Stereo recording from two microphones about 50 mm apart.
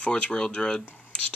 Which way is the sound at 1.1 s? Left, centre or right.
Left.